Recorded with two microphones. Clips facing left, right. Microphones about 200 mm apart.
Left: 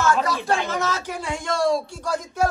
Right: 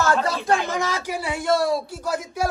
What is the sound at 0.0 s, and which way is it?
Speech, 30° right (ahead or behind).